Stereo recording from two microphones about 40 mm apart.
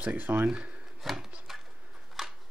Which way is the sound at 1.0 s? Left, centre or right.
Centre.